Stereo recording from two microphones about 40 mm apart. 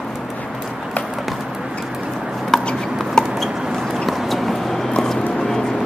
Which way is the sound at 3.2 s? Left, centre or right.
Centre.